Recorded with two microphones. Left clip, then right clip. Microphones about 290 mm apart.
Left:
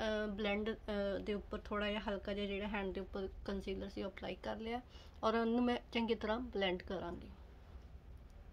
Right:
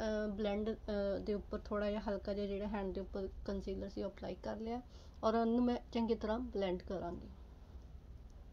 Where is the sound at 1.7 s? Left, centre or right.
Centre.